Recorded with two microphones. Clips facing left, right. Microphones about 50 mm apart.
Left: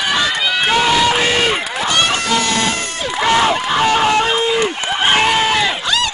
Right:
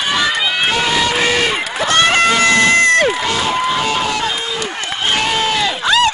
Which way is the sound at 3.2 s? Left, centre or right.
Left.